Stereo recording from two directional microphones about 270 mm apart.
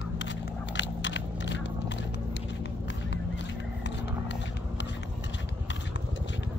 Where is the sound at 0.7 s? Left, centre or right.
Left.